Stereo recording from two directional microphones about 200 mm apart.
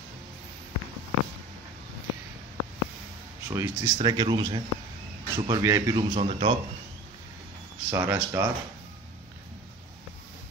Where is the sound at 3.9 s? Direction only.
25° right (ahead or behind).